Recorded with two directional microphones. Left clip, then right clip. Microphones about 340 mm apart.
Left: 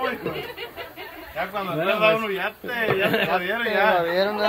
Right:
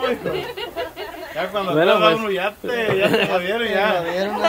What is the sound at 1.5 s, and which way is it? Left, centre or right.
A man's voice, centre.